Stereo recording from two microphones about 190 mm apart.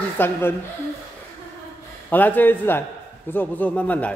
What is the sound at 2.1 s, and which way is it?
Speech, 10° left (ahead or behind).